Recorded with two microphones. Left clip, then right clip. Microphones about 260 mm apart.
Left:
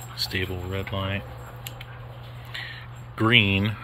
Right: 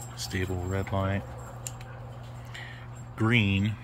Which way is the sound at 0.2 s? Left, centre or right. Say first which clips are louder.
Left 5 dB; centre.